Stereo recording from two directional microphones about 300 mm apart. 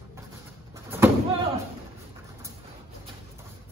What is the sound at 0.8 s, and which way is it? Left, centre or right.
Slam, centre.